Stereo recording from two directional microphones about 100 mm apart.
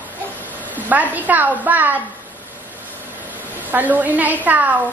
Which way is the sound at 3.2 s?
15° right (ahead or behind).